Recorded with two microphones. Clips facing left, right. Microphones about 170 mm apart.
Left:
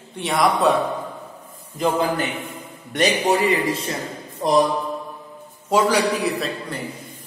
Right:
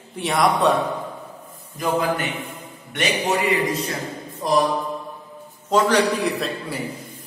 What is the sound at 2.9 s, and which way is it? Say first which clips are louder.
Speech: left 3 dB; 40° left (ahead or behind).